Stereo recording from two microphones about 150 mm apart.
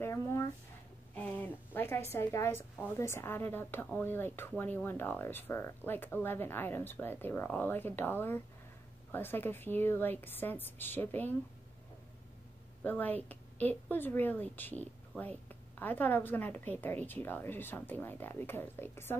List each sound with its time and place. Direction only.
0.0 s a sound: 20° left (ahead or behind)
3.0 s a woman's voice: 15° left (ahead or behind)
12.8 s a woman's voice: 10° left (ahead or behind)